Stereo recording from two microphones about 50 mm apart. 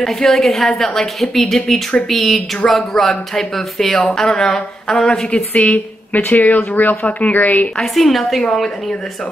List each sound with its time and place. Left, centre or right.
0.0 s a woman's voice: centre
5.3 s a woman's voice: left
7.7 s a woman's voice: centre